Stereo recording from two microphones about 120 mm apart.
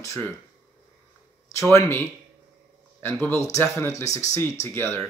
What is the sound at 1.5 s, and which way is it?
Speech, 25° left (ahead or behind).